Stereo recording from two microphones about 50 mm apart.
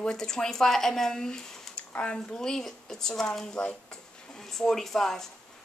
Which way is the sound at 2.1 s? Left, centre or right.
Centre.